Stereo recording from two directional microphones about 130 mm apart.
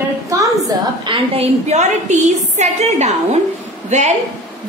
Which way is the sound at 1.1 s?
50° right (ahead or behind).